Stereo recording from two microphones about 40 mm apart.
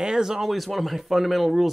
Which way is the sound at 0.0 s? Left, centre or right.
Centre.